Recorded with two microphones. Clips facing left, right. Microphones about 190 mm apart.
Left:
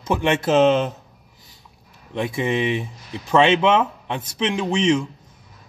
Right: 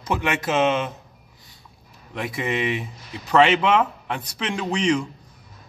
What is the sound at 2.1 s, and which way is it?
Speech, 25° left (ahead or behind).